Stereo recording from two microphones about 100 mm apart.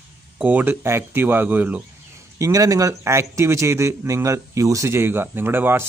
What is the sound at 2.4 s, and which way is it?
Speech, 35° right (ahead or behind).